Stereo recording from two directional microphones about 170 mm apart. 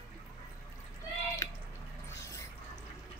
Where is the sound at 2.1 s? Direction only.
15° left (ahead or behind).